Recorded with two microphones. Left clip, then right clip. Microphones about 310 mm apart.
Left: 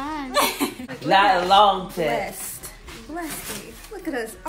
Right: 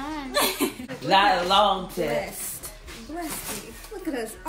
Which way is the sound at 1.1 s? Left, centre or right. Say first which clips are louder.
Left 3 dB; left.